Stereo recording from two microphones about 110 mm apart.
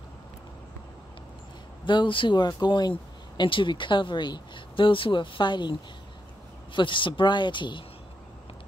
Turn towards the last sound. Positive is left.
turn(degrees=45)  # may be behind; listen again after turning